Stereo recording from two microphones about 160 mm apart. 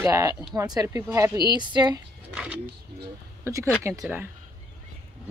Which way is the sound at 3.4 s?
20° right (ahead or behind).